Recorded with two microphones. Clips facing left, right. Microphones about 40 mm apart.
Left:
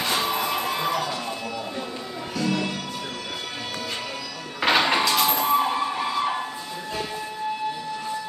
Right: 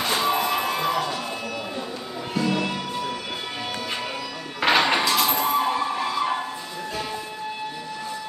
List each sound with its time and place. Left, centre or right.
0.0 s music: centre
2.3 s music: centre
4.6 s a sound: centre